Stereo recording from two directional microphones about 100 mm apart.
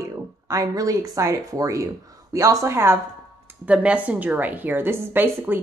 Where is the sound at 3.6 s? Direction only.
10° right (ahead or behind).